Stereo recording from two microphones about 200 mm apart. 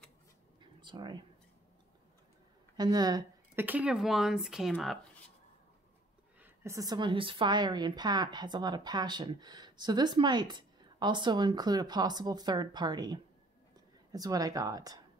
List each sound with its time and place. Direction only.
0.6 s a sound: 25° right (ahead or behind)
2.8 s speech: 20° right (ahead or behind)
3.6 s speech: 5° right (ahead or behind)
6.4 s a woman's voice: 15° right (ahead or behind)